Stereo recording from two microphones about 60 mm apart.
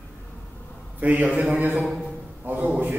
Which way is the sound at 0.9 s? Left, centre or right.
Right.